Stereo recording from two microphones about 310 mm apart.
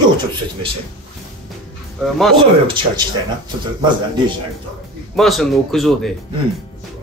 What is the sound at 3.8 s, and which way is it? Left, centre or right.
Speech, centre.